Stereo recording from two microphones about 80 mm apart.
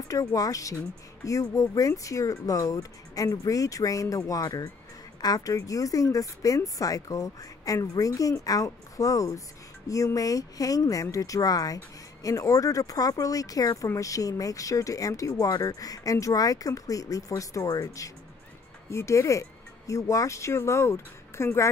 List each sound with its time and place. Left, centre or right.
0.1 s speech: left